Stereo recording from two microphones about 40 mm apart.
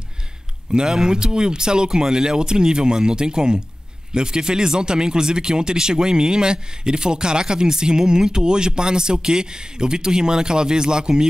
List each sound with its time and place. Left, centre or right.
0.7 s speech: centre